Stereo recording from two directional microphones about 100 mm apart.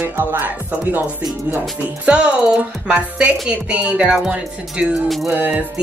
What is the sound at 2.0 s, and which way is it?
Speech, 10° right (ahead or behind).